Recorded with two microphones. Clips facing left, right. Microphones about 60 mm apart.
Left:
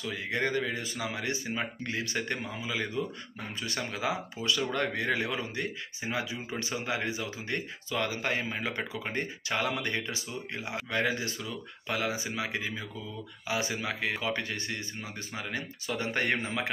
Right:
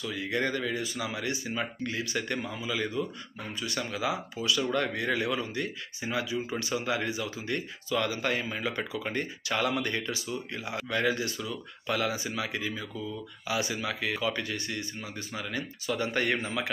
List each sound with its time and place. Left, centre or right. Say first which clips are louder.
0.0 s speech: right 1 dB; left